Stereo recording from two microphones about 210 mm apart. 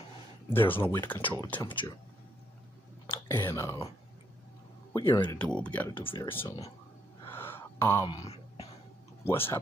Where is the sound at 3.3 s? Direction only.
10° left (ahead or behind).